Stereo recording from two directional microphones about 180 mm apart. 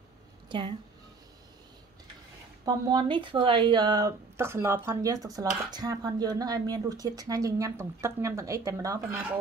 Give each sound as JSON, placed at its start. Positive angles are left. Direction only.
{"t": 0.5, "sound": "speech", "side_deg": -25}
{"t": 2.6, "sound": "speech", "side_deg": -20}